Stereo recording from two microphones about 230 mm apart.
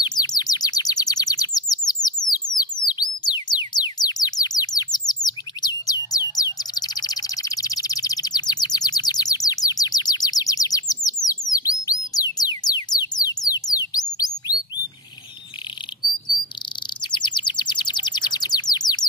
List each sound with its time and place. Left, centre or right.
0.0 s bird: centre
2.2 s music: centre
11.2 s bird: centre
12.1 s music: centre
13.1 s bird: centre
17.0 s bird: centre